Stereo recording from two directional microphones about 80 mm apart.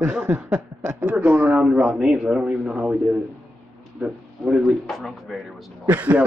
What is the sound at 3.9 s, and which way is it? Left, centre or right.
Speech, centre.